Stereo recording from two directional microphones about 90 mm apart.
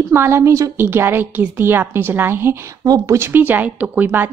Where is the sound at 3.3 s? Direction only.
20° right (ahead or behind).